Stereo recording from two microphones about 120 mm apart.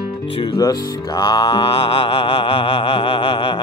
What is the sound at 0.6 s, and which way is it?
Music, 35° left (ahead or behind).